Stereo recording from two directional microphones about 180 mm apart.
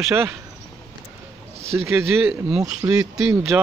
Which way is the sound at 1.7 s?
15° right (ahead or behind).